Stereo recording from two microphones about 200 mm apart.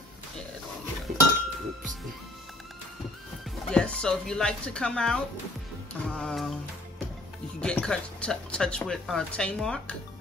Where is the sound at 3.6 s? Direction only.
5° left (ahead or behind).